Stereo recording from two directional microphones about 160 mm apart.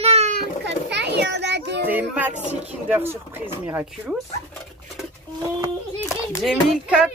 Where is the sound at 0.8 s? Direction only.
90° right.